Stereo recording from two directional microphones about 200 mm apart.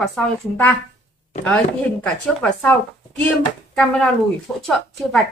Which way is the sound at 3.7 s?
5° left (ahead or behind).